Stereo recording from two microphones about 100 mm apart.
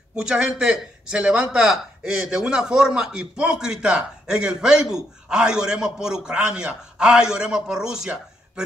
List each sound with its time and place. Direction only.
0.1 s a man's voice: 10° right (ahead or behind)